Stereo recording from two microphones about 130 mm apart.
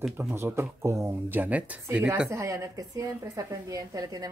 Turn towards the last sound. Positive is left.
turn(degrees=-30)  # may be behind; listen again after turning